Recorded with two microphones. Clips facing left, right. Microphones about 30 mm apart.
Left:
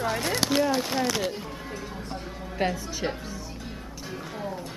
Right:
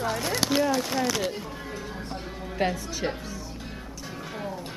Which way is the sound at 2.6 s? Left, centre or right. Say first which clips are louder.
Even; centre.